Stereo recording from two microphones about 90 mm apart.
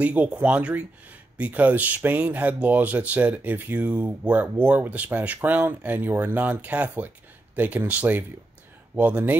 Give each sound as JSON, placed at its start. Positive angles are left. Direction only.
{"t": 0.0, "sound": "speech", "side_deg": -15}